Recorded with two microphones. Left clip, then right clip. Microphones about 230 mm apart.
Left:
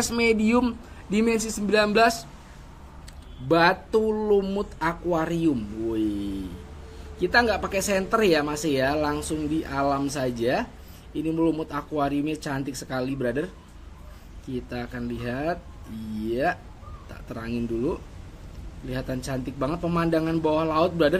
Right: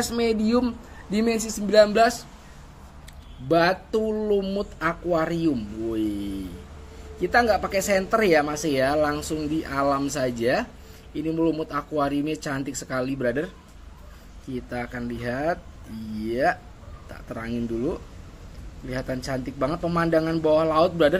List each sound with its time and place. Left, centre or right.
0.0 s speech: centre
3.4 s speech: centre
14.7 s speech: centre
17.3 s speech: centre